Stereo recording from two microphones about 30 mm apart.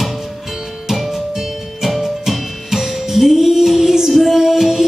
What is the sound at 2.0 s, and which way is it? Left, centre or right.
Music, centre.